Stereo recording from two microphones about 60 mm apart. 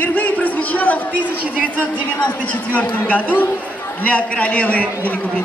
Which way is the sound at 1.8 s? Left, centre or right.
Left.